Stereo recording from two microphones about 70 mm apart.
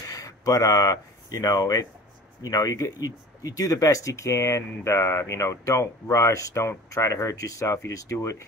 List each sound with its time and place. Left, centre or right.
0.0 s speech: left